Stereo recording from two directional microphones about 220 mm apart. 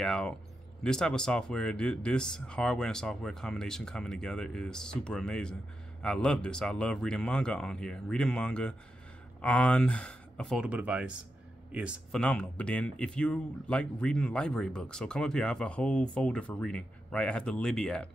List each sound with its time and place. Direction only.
0.0 s speech: 5° left (ahead or behind)